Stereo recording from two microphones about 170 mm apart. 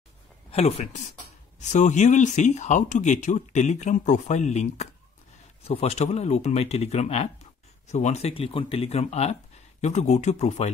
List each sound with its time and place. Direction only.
0.5 s speech: 35° left (ahead or behind)